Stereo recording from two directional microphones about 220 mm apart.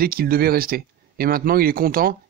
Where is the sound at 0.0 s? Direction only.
40° right (ahead or behind).